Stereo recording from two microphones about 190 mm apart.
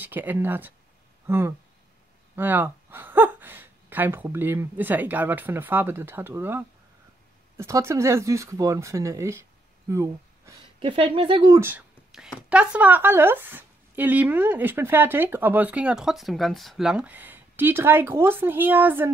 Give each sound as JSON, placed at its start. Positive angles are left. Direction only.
{"t": 0.0, "sound": "speech", "side_deg": -10}
{"t": 11.6, "sound": "speech", "side_deg": -5}